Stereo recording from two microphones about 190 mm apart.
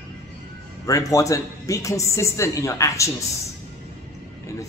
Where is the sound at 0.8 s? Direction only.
15° left (ahead or behind).